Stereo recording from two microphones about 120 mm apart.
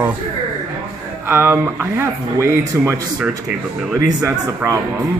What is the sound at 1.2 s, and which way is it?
Speech, 20° right (ahead or behind).